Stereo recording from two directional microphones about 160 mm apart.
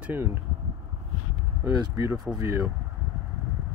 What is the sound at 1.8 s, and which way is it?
Speech, 20° right (ahead or behind).